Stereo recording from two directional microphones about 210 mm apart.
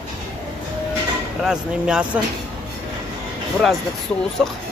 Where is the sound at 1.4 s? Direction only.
5° right (ahead or behind).